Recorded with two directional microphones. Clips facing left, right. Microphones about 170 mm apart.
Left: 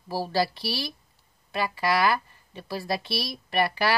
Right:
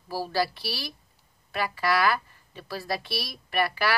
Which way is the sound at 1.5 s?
20° left (ahead or behind).